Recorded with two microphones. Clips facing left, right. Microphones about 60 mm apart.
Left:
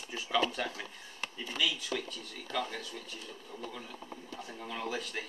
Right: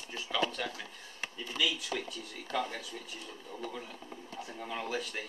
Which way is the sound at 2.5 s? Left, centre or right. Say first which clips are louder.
Right 1 dB; centre.